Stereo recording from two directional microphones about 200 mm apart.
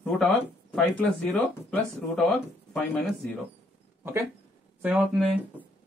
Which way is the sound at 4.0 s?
15° right (ahead or behind).